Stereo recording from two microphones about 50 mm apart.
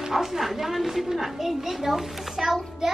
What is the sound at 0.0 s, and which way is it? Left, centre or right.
A woman's voice, centre.